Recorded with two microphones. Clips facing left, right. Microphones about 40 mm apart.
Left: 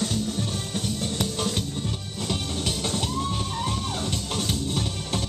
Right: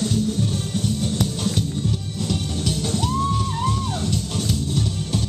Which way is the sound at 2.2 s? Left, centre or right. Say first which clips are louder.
Right 2 dB; centre.